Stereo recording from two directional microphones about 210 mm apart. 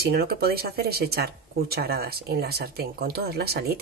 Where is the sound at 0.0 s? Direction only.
45° right (ahead or behind).